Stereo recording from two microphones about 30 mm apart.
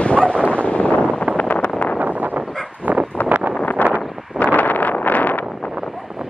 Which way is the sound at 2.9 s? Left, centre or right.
Right.